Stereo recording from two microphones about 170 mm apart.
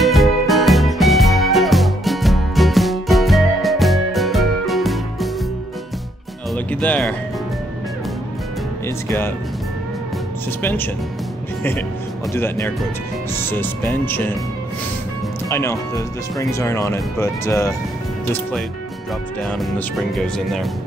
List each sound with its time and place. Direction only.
0.0 s music: centre (ahead or behind)
6.5 s music: 10° left (ahead or behind)
8.8 s music: 15° left (ahead or behind)
10.6 s speech: 10° left (ahead or behind)
12.4 s speech: 15° left (ahead or behind)
15.5 s speech: 15° left (ahead or behind)
19.4 s speech: centre (ahead or behind)